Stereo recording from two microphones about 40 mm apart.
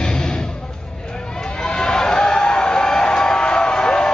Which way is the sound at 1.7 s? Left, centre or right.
Centre.